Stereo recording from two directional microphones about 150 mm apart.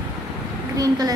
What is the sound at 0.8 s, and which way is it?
Speech, 25° right (ahead or behind).